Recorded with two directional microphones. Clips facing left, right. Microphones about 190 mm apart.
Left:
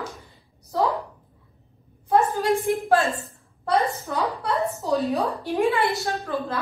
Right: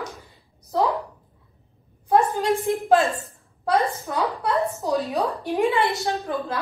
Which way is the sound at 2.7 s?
15° right (ahead or behind).